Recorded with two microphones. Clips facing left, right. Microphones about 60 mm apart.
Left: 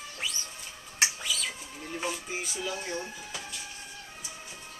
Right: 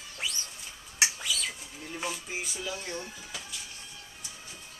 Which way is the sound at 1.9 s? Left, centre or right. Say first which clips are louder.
Left 1 dB; centre.